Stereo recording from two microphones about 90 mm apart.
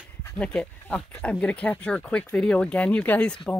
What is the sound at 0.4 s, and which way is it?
Speech, 15° left (ahead or behind).